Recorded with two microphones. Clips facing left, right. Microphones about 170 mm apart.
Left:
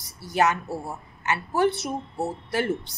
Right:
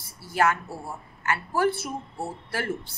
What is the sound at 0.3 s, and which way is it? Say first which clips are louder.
A woman's voice: left 1 dB; 20° left (ahead or behind).